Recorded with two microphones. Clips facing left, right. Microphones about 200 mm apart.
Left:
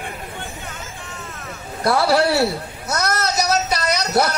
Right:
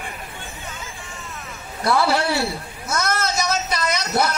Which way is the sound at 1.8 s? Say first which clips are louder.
Left 3 dB; 40° left (ahead or behind).